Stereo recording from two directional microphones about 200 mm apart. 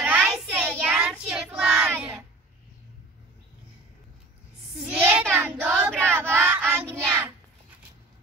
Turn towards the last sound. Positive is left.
turn(degrees=-10)  # may be behind; listen again after turning